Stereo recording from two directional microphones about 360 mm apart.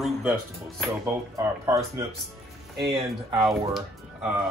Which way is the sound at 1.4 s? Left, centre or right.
Centre.